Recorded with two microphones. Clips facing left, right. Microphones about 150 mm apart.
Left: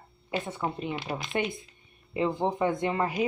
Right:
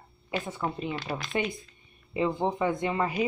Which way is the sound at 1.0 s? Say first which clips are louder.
Even; 20° left (ahead or behind).